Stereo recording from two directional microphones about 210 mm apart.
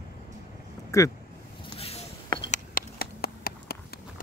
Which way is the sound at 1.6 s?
30° left (ahead or behind).